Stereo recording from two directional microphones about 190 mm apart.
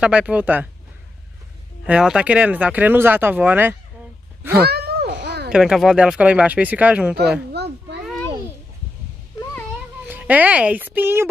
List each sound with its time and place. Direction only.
0.0 s speech: 5° right (ahead or behind)
1.9 s speech: 5° right (ahead or behind)
4.6 s a sound: 55° right (ahead or behind)
5.5 s speech: 5° right (ahead or behind)
7.5 s children playing: 60° right (ahead or behind)
10.0 s speech: 10° right (ahead or behind)